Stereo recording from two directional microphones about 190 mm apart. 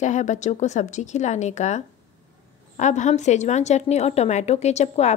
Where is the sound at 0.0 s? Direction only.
40° left (ahead or behind).